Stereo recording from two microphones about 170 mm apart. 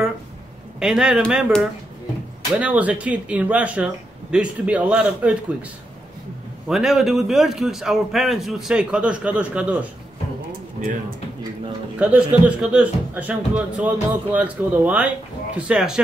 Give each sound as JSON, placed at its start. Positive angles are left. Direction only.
{"t": 0.7, "sound": "a man's voice", "side_deg": -5}
{"t": 6.7, "sound": "a man's voice", "side_deg": 0}
{"t": 10.8, "sound": "speech", "side_deg": -50}
{"t": 12.0, "sound": "speech", "side_deg": -10}